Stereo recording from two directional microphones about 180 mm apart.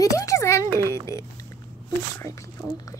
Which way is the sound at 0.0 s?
20° left (ahead or behind).